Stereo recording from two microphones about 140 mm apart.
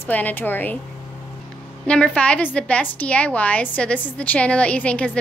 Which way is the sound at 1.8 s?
5° left (ahead or behind).